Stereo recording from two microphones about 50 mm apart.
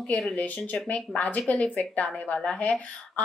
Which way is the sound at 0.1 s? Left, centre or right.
Centre.